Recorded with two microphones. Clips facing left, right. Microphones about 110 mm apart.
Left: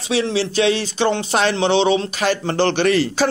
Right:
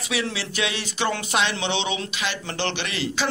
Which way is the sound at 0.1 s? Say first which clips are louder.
Left 9 dB; 30° left (ahead or behind).